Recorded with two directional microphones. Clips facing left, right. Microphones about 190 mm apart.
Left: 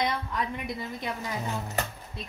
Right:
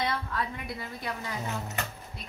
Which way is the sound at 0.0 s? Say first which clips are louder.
Left 2 dB; 15° left (ahead or behind).